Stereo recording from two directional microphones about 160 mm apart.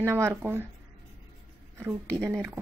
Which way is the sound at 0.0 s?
15° right (ahead or behind).